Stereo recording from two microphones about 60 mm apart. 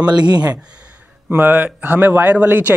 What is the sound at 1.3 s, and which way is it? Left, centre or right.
Speech, right.